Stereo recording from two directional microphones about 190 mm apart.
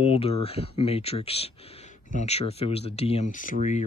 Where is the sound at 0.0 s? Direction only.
30° left (ahead or behind).